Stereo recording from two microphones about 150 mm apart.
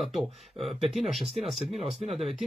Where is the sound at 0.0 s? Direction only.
Centre (ahead or behind).